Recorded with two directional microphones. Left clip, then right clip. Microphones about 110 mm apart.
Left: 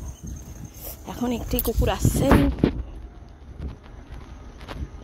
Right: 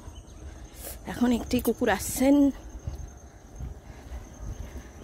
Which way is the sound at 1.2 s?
25° right (ahead or behind).